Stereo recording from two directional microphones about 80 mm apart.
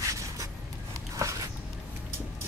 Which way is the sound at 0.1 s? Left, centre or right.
Right.